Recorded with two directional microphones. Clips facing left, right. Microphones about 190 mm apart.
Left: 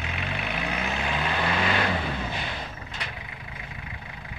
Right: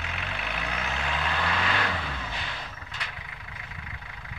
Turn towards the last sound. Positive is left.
turn(degrees=20)  # may be behind; listen again after turning